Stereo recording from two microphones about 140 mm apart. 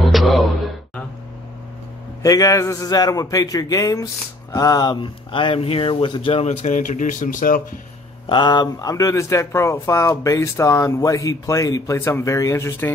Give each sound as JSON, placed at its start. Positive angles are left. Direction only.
{"t": 0.1, "sound": "a sound", "side_deg": 0}
{"t": 2.2, "sound": "speech", "side_deg": 25}
{"t": 6.4, "sound": "speech", "side_deg": 55}
{"t": 8.3, "sound": "speech", "side_deg": 35}